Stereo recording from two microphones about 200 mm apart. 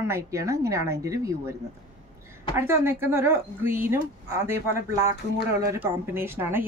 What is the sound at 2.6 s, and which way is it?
Speech, 10° right (ahead or behind).